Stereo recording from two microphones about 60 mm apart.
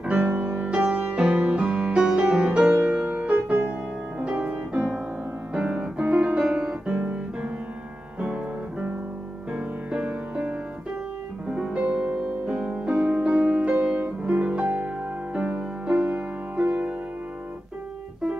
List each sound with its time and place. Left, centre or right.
0.2 s music: right
5.5 s music: centre
11.7 s music: centre